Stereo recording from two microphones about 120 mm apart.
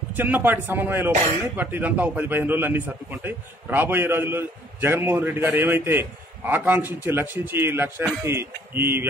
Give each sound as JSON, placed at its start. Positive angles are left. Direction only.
{"t": 0.1, "sound": "a man's voice", "side_deg": -15}